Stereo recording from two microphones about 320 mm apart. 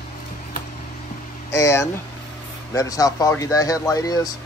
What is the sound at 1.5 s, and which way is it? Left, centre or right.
Speech, centre.